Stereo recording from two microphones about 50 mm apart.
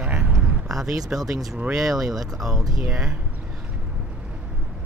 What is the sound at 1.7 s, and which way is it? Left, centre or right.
Speech, centre.